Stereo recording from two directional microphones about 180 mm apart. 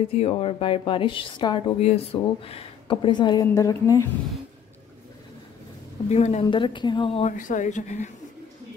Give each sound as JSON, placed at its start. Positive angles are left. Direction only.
{"t": 0.2, "sound": "a woman's voice", "side_deg": 35}
{"t": 6.0, "sound": "a woman's voice", "side_deg": 40}
{"t": 6.4, "sound": "a woman's voice", "side_deg": 25}
{"t": 7.3, "sound": "a woman's voice", "side_deg": 45}